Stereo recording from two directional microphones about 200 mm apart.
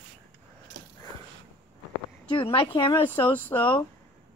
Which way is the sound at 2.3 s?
25° left (ahead or behind).